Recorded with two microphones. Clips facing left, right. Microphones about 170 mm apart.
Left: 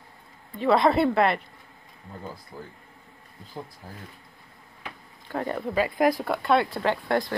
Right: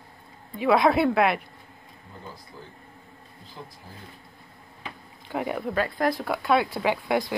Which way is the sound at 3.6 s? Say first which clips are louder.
Left 5 dB; 45° left (ahead or behind).